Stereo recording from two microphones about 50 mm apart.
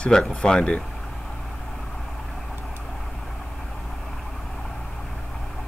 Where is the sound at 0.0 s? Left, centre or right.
Centre.